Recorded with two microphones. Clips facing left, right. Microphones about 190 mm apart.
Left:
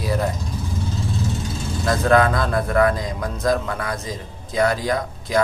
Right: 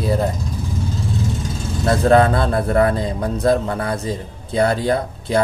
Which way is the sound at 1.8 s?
30° right (ahead or behind).